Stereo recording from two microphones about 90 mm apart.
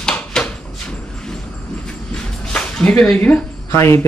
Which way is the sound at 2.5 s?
10° left (ahead or behind).